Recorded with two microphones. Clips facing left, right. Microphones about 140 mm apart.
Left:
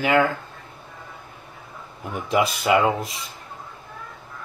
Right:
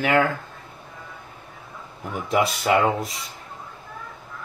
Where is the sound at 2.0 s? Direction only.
Centre (ahead or behind).